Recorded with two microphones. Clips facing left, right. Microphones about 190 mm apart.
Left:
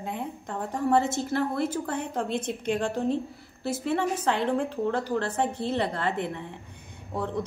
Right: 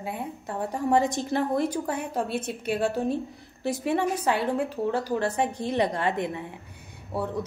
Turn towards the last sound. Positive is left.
turn(degrees=-10)  # may be behind; listen again after turning